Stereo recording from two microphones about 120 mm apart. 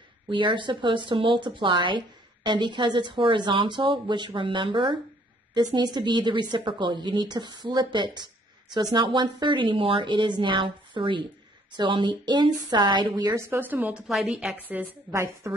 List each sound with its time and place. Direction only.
0.3 s a woman's voice: 40° right (ahead or behind)
13.3 s a woman's voice: 20° right (ahead or behind)
15.0 s a woman's voice: 20° right (ahead or behind)